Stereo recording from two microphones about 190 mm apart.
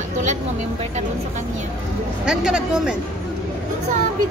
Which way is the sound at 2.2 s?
5° right (ahead or behind).